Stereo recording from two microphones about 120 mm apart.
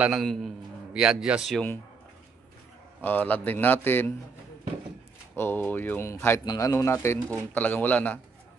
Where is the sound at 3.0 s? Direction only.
15° left (ahead or behind).